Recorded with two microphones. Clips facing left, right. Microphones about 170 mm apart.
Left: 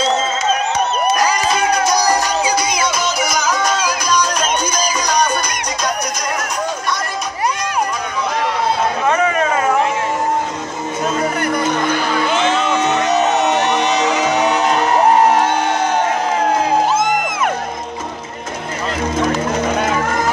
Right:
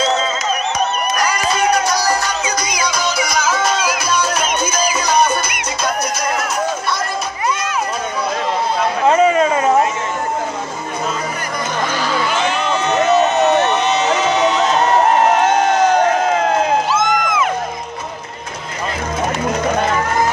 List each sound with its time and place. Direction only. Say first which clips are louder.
1.2 s music: left 1 dB; 15° left (ahead or behind)
2.1 s music: left 3 dB; 30° left (ahead or behind)
3.3 s music: even; 5° right (ahead or behind)
9.0 s a sound: right 6 dB; 25° right (ahead or behind)
12.3 s music: left 2 dB; 20° left (ahead or behind)
16.9 s music: even; 50° left (ahead or behind)